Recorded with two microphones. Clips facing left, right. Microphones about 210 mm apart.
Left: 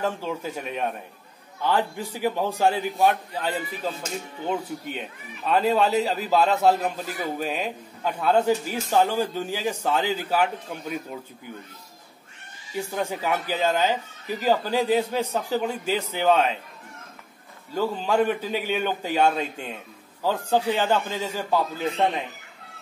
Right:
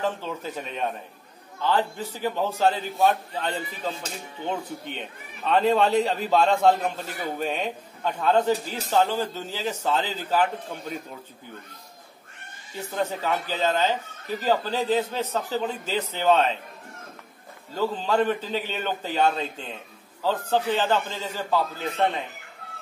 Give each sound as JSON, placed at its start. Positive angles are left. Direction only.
{"t": 0.0, "sound": "a man's voice", "side_deg": 10}
{"t": 12.9, "sound": "speech", "side_deg": 10}
{"t": 17.7, "sound": "speech", "side_deg": 10}